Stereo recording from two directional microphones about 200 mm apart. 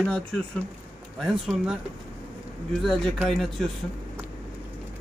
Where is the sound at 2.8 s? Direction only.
Centre (ahead or behind).